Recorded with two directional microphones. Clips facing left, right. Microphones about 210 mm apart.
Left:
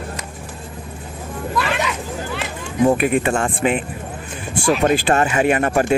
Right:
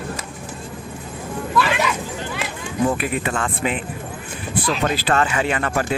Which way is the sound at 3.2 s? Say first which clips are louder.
Left 4 dB; 25° left (ahead or behind).